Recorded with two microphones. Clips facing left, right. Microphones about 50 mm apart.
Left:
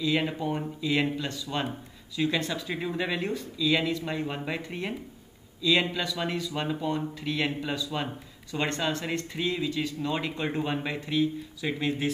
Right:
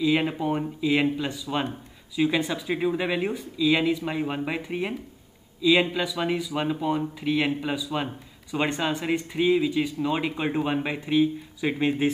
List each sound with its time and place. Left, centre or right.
0.0 s speech: centre